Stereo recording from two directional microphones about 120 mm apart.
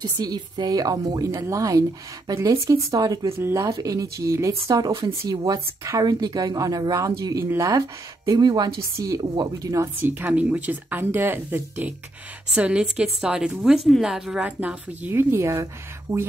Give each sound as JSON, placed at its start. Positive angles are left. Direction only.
{"t": 0.2, "sound": "speech", "side_deg": -35}
{"t": 3.3, "sound": "speech", "side_deg": -20}
{"t": 8.3, "sound": "speech", "side_deg": -35}
{"t": 10.1, "sound": "a woman's voice", "side_deg": -15}